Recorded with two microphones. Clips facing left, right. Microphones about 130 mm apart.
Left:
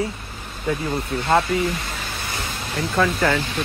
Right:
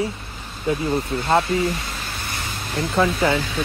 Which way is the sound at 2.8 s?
25° right (ahead or behind).